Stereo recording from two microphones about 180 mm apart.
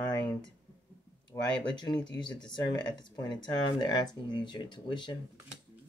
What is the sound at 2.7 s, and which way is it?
Speech, 25° left (ahead or behind).